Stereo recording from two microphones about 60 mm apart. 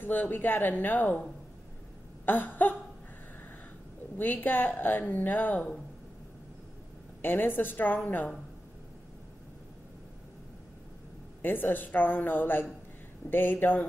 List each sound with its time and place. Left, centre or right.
0.0 s a woman's voice: left
2.2 s a woman's voice: left
4.2 s a woman's voice: left
7.2 s a woman's voice: left
11.4 s a woman's voice: left